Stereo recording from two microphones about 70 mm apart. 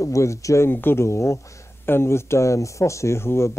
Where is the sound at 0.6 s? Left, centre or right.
Left.